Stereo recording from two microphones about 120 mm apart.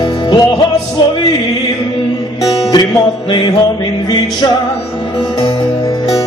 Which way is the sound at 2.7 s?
40° left (ahead or behind).